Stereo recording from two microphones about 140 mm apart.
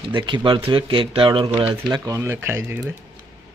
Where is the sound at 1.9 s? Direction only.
25° right (ahead or behind).